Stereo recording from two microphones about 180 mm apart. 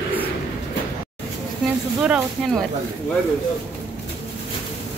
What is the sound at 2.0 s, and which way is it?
Speech, centre (ahead or behind).